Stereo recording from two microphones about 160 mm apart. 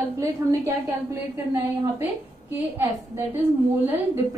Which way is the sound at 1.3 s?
15° right (ahead or behind).